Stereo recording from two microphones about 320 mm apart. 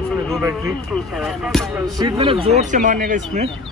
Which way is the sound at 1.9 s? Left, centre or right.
Centre.